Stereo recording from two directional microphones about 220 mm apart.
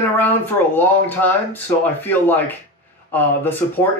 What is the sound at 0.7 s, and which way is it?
Speech, 10° left (ahead or behind).